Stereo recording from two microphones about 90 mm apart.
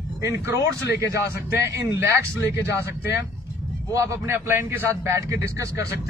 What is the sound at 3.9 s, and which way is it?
A man's voice, 35° right (ahead or behind).